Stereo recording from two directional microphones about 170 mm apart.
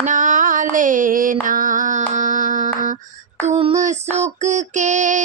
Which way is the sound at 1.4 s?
50° right (ahead or behind).